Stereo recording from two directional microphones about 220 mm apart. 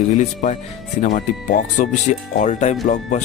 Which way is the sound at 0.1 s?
35° left (ahead or behind).